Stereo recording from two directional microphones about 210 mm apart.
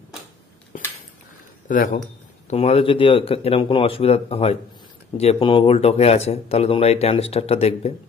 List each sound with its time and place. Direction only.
1.7 s speech: 40° left (ahead or behind)